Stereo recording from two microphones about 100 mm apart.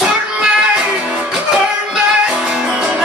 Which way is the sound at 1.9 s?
5° right (ahead or behind).